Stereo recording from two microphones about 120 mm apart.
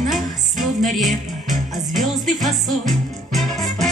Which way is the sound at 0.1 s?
Centre (ahead or behind).